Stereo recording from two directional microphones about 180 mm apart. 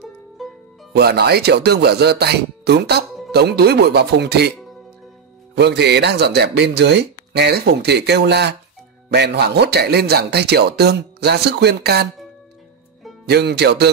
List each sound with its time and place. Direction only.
0.9 s speech: 60° right (ahead or behind)
13.3 s speech: 65° right (ahead or behind)